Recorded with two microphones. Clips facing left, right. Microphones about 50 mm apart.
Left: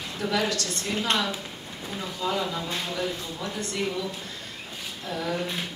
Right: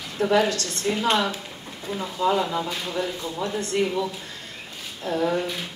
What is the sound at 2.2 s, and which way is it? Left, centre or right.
Speech, right.